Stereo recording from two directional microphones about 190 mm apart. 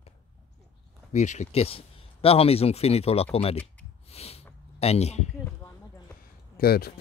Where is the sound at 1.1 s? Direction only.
35° left (ahead or behind).